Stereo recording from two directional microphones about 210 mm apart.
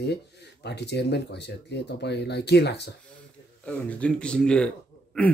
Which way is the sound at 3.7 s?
5° left (ahead or behind).